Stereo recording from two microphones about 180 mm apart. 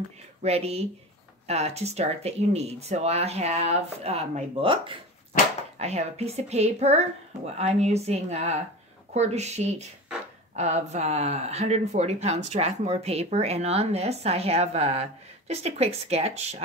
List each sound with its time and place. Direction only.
0.4 s speech: 35° right (ahead or behind)